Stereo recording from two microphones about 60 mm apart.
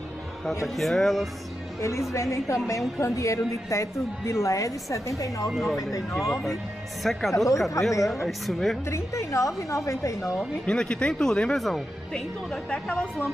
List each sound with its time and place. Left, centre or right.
0.7 s speech: centre
1.8 s a woman's voice: left
5.5 s speech: centre
5.8 s speech: left
6.4 s speech: centre
7.8 s a woman's voice: left
8.1 s speech: centre
8.9 s a woman's voice: left
10.7 s speech: centre
11.5 s speech: centre
12.6 s speech: centre